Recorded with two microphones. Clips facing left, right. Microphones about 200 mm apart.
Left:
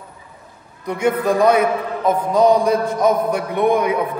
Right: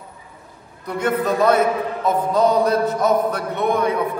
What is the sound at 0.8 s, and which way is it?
A man's voice, 10° left (ahead or behind).